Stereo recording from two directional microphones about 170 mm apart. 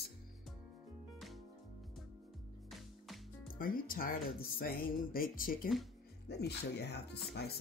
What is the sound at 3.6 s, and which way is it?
Speech, 55° left (ahead or behind).